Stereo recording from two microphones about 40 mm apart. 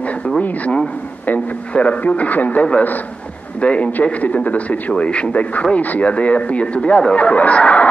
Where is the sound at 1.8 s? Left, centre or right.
Left.